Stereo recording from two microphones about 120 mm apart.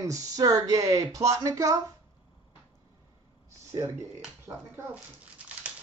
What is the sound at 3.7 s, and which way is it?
Speech, 30° right (ahead or behind).